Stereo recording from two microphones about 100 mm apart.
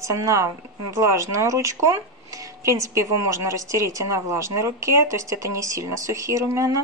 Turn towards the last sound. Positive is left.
turn(degrees=-30)  # may be behind; listen again after turning